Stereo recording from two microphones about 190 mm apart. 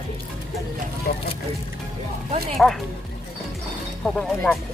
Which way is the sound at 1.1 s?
50° left (ahead or behind).